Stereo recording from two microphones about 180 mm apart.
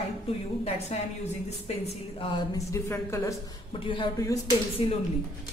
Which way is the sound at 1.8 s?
25° left (ahead or behind).